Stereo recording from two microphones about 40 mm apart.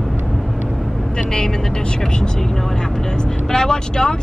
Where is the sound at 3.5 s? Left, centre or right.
Centre.